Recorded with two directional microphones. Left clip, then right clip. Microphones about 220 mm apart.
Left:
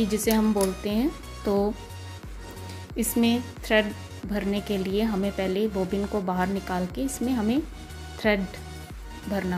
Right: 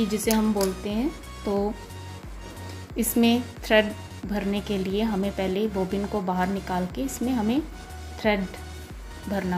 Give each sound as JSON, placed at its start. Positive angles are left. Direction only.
{"t": 0.0, "sound": "speech", "side_deg": 10}
{"t": 3.0, "sound": "a woman's voice", "side_deg": 0}